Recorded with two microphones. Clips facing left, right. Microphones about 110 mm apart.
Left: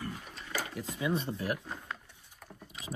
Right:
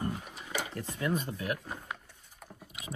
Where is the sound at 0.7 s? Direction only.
10° left (ahead or behind).